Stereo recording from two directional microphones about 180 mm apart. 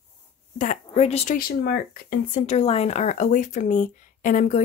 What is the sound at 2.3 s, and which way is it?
Speech, 35° left (ahead or behind).